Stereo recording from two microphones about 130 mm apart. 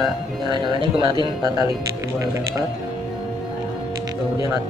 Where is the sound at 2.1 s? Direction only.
25° right (ahead or behind).